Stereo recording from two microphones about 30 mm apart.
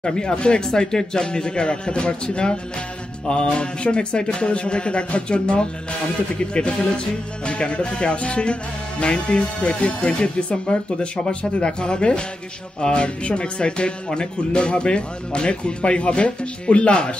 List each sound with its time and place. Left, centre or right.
0.0 s speech: left
14.5 s speech: left